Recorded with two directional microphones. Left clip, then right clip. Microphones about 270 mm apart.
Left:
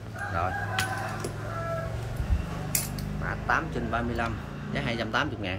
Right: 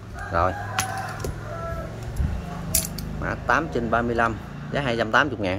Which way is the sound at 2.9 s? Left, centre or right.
Right.